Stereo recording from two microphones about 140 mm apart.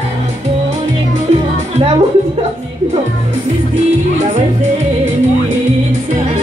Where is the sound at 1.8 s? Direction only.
45° right (ahead or behind).